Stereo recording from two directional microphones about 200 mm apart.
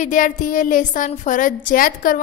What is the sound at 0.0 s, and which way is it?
A woman's voice, 40° left (ahead or behind).